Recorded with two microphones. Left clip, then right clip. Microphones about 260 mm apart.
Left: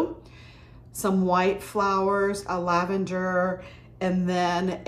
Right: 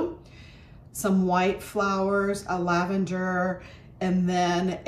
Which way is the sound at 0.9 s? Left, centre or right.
Centre.